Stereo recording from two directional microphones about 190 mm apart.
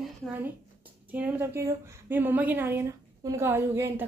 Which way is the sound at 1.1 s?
10° right (ahead or behind).